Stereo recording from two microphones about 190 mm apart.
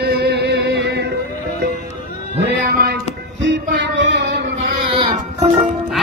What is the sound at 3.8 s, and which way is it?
Music, 70° right (ahead or behind).